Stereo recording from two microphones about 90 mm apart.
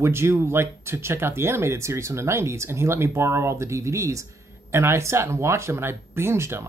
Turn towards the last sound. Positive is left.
turn(degrees=-30)  # may be behind; listen again after turning